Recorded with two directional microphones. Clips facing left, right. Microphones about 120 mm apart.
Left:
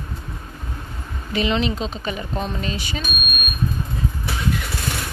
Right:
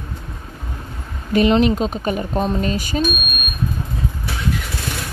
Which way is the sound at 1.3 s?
50° right (ahead or behind).